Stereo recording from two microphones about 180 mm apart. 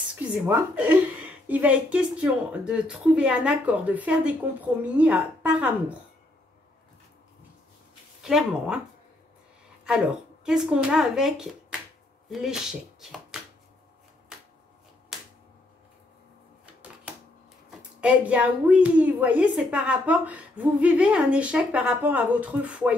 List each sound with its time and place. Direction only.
0.1 s a woman's voice: 5° right (ahead or behind)
8.2 s speech: centre (ahead or behind)
9.8 s speech: 5° right (ahead or behind)
15.1 s a sound: centre (ahead or behind)
17.7 s a woman's voice: 5° right (ahead or behind)